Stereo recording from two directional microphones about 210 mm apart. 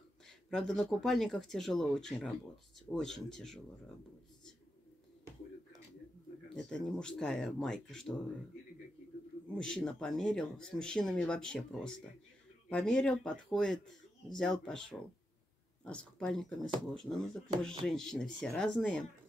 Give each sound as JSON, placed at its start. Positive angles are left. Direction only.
{"t": 0.5, "sound": "speech", "side_deg": 0}
{"t": 6.5, "sound": "speech", "side_deg": 5}
{"t": 9.6, "sound": "speech", "side_deg": 5}